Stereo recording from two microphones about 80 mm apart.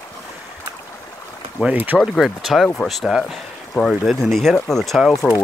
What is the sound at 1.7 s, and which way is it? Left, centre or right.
Speech, right.